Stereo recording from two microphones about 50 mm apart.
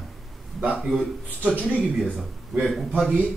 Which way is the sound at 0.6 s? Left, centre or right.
Centre.